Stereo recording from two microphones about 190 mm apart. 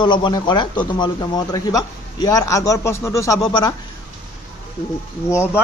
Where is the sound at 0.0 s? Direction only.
25° left (ahead or behind).